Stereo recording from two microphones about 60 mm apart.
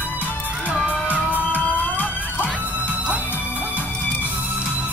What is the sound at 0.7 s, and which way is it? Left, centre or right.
Music, right.